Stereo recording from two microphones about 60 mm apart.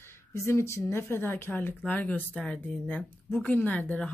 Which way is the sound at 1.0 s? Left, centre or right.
Left.